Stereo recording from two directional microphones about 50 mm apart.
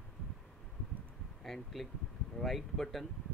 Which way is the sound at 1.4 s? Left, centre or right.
Centre.